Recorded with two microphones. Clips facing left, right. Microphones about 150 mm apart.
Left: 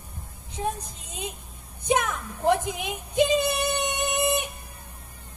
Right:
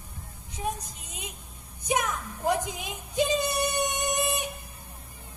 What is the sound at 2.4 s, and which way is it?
Speech, 20° left (ahead or behind).